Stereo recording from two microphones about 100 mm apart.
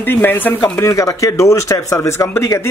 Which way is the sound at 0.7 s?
30° left (ahead or behind).